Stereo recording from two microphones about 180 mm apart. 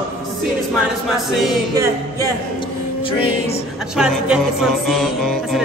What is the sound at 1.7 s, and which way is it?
Music, 15° right (ahead or behind).